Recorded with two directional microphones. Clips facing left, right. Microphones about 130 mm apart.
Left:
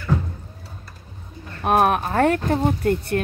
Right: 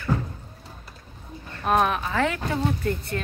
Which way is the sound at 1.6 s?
55° left (ahead or behind).